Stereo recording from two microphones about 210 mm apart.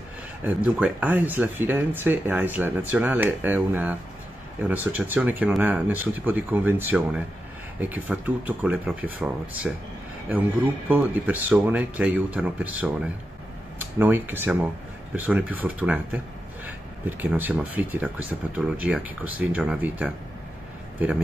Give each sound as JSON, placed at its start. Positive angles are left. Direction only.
{"t": 0.4, "sound": "speech", "side_deg": -5}
{"t": 10.9, "sound": "speech", "side_deg": -10}
{"t": 17.2, "sound": "speech", "side_deg": -10}